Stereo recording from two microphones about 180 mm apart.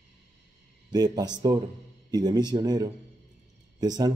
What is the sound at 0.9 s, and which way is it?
Speech, 20° right (ahead or behind).